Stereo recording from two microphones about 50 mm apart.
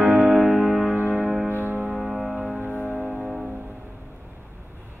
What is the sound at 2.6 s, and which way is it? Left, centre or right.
Music, left.